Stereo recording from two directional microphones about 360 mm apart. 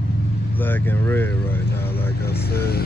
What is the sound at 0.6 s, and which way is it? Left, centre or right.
Speech, centre.